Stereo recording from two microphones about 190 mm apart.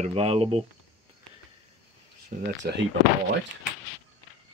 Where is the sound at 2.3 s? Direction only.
45° right (ahead or behind).